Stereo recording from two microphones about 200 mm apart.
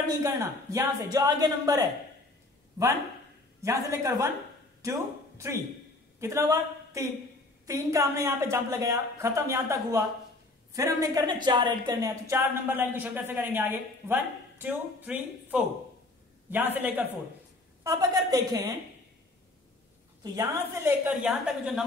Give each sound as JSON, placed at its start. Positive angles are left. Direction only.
{"t": 0.2, "sound": "a woman's voice", "side_deg": -15}
{"t": 20.2, "sound": "a woman's voice", "side_deg": -15}